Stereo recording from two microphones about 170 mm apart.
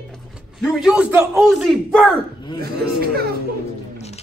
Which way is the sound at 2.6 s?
65° right (ahead or behind).